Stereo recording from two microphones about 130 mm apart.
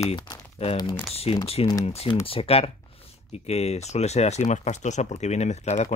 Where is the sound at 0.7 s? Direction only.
35° left (ahead or behind).